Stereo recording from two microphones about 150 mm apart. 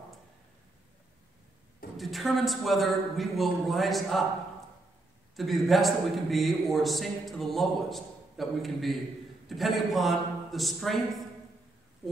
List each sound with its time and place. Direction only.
2.0 s a man's voice: centre (ahead or behind)
5.3 s a man's voice: centre (ahead or behind)